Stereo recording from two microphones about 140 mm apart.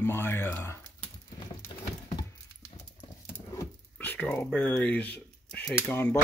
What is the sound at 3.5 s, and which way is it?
Speech, 20° left (ahead or behind).